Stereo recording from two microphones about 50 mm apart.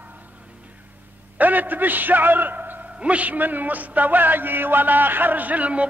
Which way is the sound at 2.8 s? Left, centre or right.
Right.